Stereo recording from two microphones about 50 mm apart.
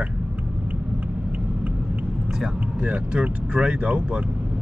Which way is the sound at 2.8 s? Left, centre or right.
Right.